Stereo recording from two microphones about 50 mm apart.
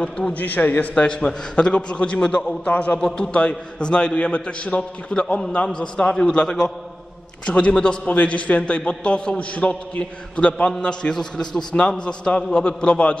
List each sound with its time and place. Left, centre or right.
0.3 s a man's voice: left
1.0 s a man's voice: centre
2.7 s a man's voice: left
3.0 s a man's voice: centre
3.3 s a man's voice: left